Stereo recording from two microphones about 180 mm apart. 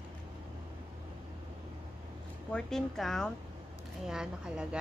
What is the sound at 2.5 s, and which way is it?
Speech, 5° left (ahead or behind).